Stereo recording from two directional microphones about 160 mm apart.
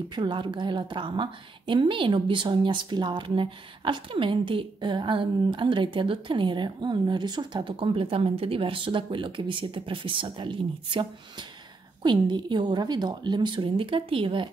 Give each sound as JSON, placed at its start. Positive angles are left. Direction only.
{"t": 0.1, "sound": "a woman's voice", "side_deg": -30}